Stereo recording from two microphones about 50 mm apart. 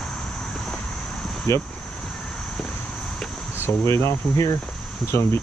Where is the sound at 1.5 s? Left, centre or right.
Left.